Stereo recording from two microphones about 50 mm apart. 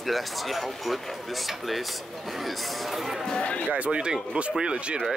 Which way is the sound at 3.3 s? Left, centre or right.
Left.